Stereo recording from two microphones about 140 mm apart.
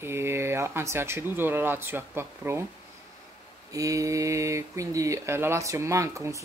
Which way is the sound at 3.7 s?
25° right (ahead or behind).